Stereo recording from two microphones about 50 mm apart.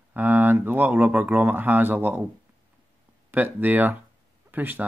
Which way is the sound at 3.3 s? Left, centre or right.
Right.